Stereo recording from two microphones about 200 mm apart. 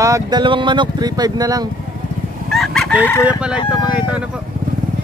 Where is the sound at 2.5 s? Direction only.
Centre (ahead or behind).